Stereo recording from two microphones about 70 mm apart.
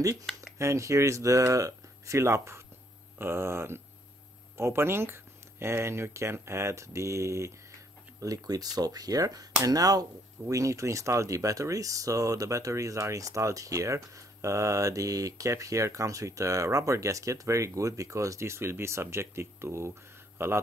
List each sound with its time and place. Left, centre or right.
0.0 s speech: right
8.2 s speech: right